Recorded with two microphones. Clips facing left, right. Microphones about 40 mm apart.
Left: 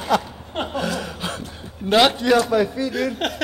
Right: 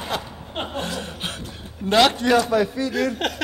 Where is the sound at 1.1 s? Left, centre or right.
Right.